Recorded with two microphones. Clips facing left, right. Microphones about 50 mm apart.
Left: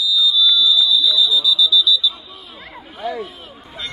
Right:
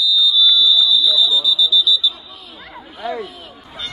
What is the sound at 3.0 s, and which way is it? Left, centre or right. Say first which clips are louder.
Speech: even; right.